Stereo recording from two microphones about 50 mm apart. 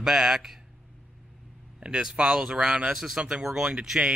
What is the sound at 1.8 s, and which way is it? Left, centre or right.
Speech, centre.